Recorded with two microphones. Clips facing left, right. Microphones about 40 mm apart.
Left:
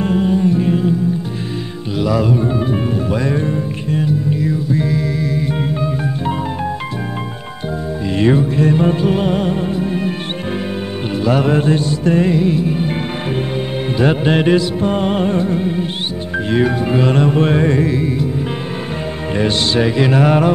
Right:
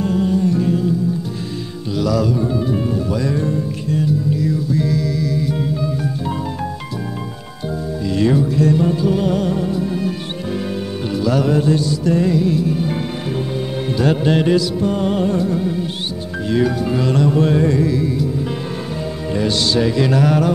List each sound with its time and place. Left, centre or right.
0.0 s music: left
2.0 s music: left
8.1 s music: left
11.2 s music: left
13.9 s music: left
19.3 s music: left